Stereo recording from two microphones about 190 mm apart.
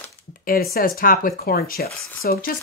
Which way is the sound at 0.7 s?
50° left (ahead or behind).